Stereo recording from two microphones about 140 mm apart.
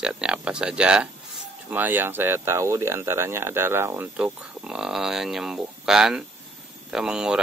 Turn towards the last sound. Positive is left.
turn(degrees=-5)  # may be behind; listen again after turning